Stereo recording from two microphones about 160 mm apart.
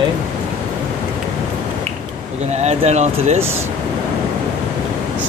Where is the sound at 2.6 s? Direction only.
45° right (ahead or behind).